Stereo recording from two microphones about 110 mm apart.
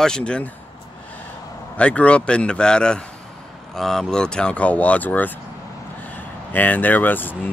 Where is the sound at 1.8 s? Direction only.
10° left (ahead or behind).